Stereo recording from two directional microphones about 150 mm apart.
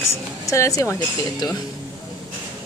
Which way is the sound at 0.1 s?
20° left (ahead or behind).